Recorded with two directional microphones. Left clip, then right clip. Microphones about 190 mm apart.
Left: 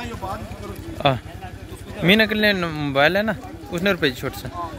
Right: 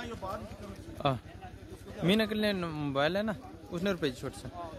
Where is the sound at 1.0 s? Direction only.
15° right (ahead or behind).